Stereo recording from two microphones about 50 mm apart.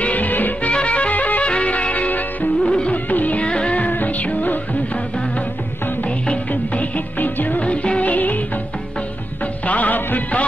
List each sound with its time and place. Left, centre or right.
0.0 s music: left
2.6 s music: left
3.1 s music: left
3.4 s music: left
6.5 s music: left
9.7 s music: left